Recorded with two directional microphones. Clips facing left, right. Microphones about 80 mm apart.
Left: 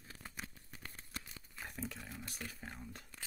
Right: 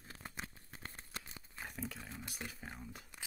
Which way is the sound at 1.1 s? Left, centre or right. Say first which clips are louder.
Left 1 dB; right.